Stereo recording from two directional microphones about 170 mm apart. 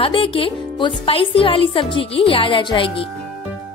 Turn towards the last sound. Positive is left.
turn(degrees=30)  # may be behind; listen again after turning